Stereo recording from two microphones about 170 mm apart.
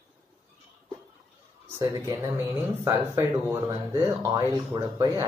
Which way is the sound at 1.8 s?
20° right (ahead or behind).